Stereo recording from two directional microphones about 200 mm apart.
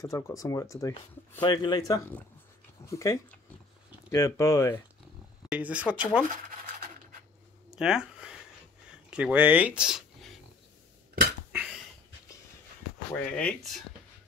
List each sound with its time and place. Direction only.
0.4 s speech: 15° left (ahead or behind)
5.5 s speech: 5° right (ahead or behind)
7.7 s a sound: 5° right (ahead or behind)
9.1 s speech: 5° right (ahead or behind)
13.1 s speech: 5° left (ahead or behind)